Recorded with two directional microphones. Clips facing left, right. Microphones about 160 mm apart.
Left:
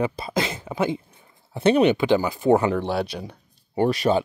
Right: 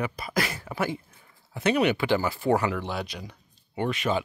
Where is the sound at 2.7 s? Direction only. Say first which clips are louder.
Left 7 dB; 30° left (ahead or behind).